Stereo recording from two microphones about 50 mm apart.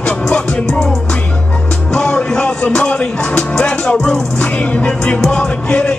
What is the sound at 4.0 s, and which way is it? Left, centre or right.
Music, centre.